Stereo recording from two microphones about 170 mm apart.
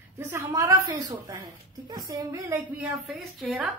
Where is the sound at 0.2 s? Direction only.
15° right (ahead or behind).